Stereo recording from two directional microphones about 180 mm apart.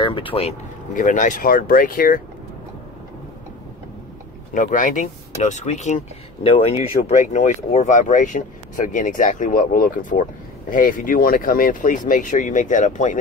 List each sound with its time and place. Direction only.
0.0 s speech: 30° left (ahead or behind); by 2.2 s 50° left (ahead or behind)
4.6 s speech: 45° left (ahead or behind)